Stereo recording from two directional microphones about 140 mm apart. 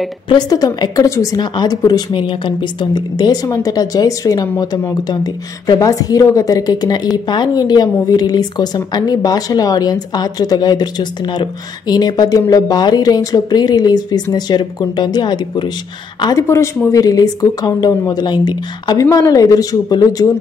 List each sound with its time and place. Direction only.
0.3 s a woman's voice: 25° left (ahead or behind)